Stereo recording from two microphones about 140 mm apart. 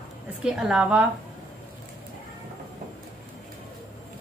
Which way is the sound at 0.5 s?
5° right (ahead or behind).